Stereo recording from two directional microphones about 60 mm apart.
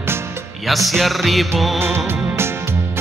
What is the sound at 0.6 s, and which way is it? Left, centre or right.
Music, centre.